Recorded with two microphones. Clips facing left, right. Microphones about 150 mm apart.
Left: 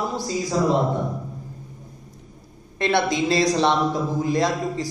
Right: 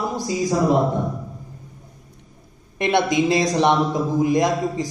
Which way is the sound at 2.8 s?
20° right (ahead or behind).